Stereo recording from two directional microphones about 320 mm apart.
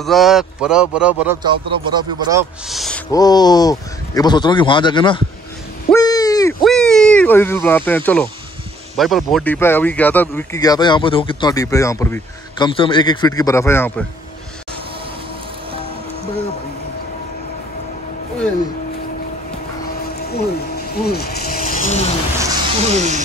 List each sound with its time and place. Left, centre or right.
0.0 s speech: centre
2.7 s speech: centre
3.1 s speech: centre
5.9 s a sound: centre
6.6 s speech: centre
20.2 s a sound: left
22.8 s music: right